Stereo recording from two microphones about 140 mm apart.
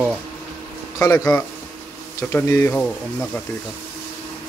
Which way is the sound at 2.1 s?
20° left (ahead or behind).